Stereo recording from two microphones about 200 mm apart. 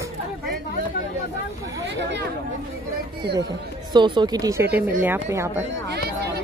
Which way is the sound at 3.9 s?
25° right (ahead or behind).